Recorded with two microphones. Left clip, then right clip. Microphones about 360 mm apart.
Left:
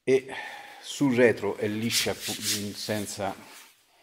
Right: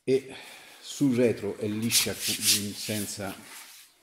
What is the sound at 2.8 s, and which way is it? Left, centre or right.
Speech, left.